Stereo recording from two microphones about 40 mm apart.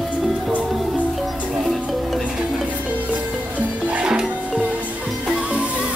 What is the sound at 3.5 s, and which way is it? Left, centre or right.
Music, right.